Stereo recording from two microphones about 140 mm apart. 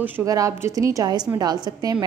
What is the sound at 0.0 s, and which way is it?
A woman's voice, 25° right (ahead or behind).